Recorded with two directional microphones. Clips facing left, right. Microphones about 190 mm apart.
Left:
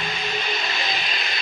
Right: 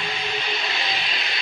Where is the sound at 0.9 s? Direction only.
45° left (ahead or behind).